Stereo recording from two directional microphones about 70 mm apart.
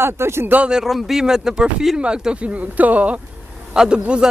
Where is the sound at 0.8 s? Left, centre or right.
Centre; by 3.2 s right.